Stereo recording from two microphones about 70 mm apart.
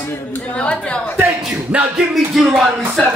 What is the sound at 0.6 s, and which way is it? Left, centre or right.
Speech, centre.